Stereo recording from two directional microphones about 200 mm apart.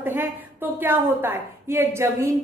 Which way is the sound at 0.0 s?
10° right (ahead or behind).